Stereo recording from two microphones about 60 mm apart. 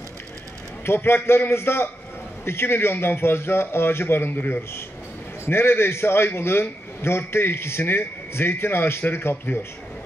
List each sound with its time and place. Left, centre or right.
0.8 s a man's voice: left